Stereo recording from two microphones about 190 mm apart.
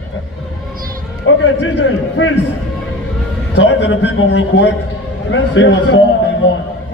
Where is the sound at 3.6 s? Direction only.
70° left (ahead or behind).